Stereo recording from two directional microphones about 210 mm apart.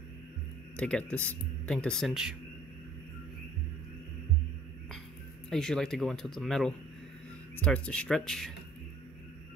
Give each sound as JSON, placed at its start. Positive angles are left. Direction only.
{"t": 0.7, "sound": "speech", "side_deg": 5}
{"t": 5.5, "sound": "speech", "side_deg": 0}